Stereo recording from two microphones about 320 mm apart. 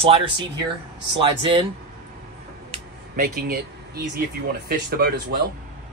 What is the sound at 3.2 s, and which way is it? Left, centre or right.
Speech, right.